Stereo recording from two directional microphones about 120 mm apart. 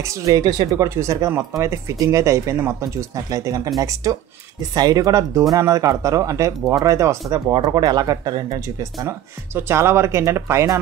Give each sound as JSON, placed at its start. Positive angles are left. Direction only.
{"t": 0.0, "sound": "speech", "side_deg": -25}
{"t": 7.5, "sound": "speech", "side_deg": -40}